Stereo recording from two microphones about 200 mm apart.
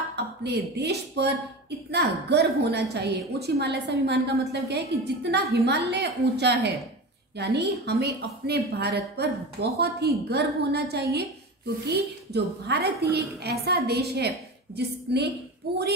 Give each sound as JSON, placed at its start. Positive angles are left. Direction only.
{"t": 0.1, "sound": "a woman's voice", "side_deg": -55}